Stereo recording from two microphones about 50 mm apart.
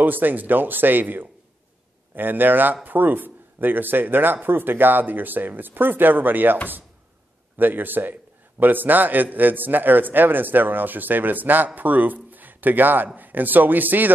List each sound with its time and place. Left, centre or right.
0.0 s a man's voice: right